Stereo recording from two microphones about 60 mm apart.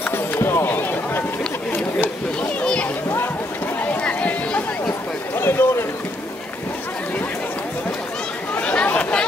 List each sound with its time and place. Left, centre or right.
0.1 s run: left
2.6 s a sound: centre
4.0 s chatter: centre
5.3 s run: left
8.5 s chatter: left